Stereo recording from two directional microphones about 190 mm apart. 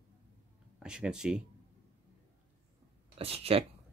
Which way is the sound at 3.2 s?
30° right (ahead or behind).